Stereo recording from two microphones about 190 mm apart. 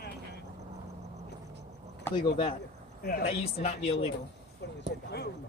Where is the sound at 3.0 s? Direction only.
50° left (ahead or behind).